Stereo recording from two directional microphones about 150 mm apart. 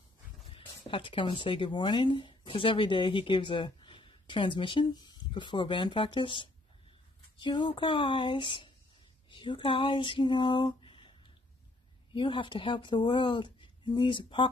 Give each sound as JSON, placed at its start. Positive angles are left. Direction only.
{"t": 0.5, "sound": "speech", "side_deg": 35}
{"t": 9.3, "sound": "a sound", "side_deg": 35}
{"t": 12.1, "sound": "speech", "side_deg": 35}